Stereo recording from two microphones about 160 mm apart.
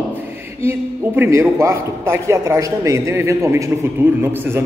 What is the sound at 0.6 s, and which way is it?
A man's voice, 15° right (ahead or behind).